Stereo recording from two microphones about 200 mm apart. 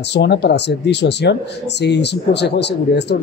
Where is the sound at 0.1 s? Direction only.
55° left (ahead or behind).